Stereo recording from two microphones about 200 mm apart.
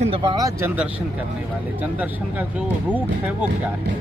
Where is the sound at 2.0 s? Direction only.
10° right (ahead or behind).